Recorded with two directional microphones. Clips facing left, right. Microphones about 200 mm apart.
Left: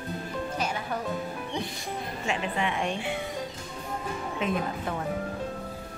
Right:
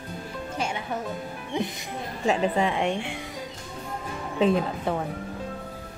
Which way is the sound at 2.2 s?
35° right (ahead or behind).